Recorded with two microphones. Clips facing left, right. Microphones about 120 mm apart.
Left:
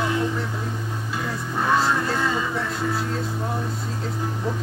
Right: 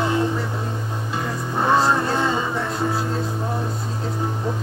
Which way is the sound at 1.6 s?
30° right (ahead or behind).